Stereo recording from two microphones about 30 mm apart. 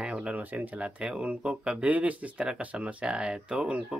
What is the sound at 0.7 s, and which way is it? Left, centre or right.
Speech, right.